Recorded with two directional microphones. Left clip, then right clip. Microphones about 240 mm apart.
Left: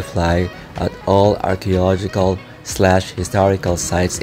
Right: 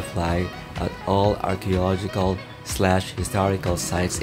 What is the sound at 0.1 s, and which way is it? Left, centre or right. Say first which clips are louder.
Speech: left 8 dB; centre.